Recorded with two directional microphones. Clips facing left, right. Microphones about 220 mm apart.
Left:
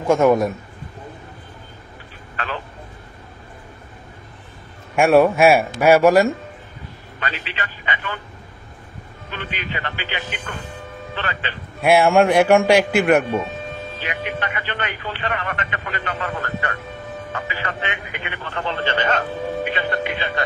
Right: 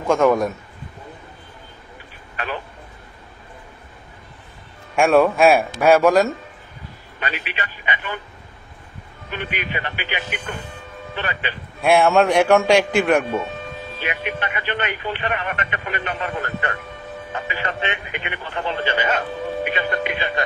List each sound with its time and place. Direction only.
2.3 s speech: 15° right (ahead or behind)
4.9 s a man's voice: 5° left (ahead or behind)
7.2 s speech: 15° right (ahead or behind)
9.3 s speech: 15° right (ahead or behind)
11.8 s a man's voice: 5° left (ahead or behind)
14.0 s speech: 15° right (ahead or behind)